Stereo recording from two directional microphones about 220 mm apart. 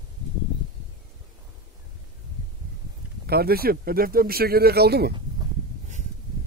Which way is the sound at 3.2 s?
45° right (ahead or behind).